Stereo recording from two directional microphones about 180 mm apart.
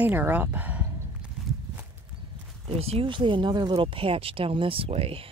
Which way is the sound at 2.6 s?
35° right (ahead or behind).